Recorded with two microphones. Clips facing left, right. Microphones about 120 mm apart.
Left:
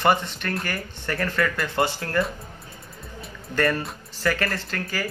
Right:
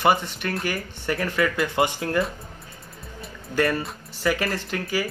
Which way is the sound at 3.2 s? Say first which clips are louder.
Even; 10° right (ahead or behind).